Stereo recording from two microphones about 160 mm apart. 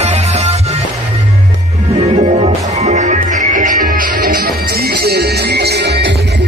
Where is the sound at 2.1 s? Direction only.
40° right (ahead or behind); by 6.1 s 90° right.